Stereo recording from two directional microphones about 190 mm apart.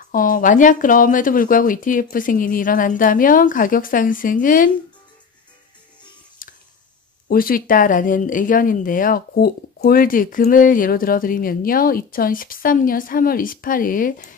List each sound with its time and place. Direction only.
0.1 s speech: 45° left (ahead or behind)
6.4 s clicking: 45° left (ahead or behind)
7.2 s speech: 50° left (ahead or behind)